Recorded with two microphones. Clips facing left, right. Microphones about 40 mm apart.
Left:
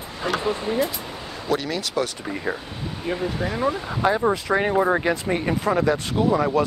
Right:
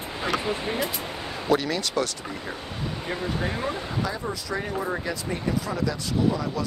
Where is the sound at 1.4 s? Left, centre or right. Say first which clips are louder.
Right 1 dB; centre.